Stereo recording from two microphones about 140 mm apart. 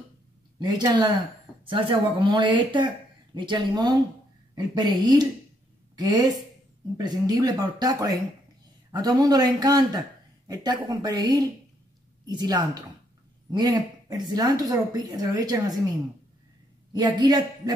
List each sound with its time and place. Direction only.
0.6 s a man's voice: 30° right (ahead or behind)
7.0 s a man's voice: 30° right (ahead or behind)
16.9 s a man's voice: 30° right (ahead or behind)